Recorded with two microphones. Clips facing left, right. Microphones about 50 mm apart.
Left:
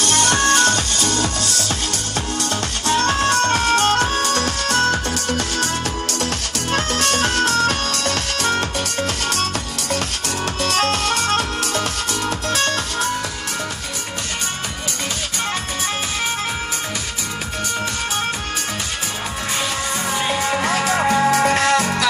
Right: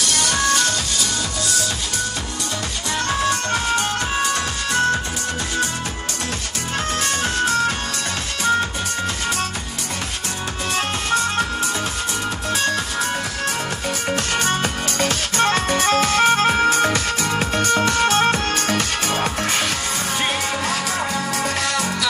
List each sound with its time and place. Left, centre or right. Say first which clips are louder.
0.0 s music: left 3 dB; left
2.9 s music: left 4 dB; left
6.7 s music: left 3 dB; left
10.7 s music: left 1 dB; left
15.3 s music: right 9 dB; right
15.9 s music: right 9 dB; right
16.3 s music: right 8 dB; right
20.6 s music: left 5 dB; left